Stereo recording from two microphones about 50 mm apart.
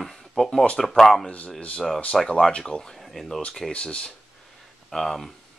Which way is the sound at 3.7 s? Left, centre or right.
Left.